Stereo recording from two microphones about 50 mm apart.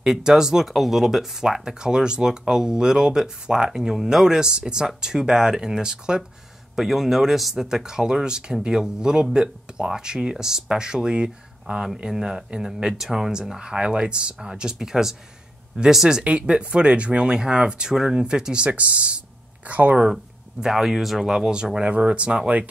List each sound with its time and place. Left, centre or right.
0.0 s speech: centre; by 20.0 s right
20.6 s speech: centre
21.8 s speech: right